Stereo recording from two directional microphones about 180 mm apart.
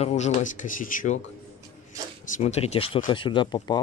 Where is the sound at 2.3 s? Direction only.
40° left (ahead or behind).